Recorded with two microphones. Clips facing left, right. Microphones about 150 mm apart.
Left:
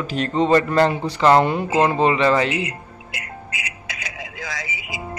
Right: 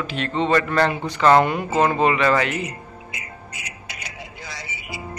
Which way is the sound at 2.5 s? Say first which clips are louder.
Left 2 dB; 80° left.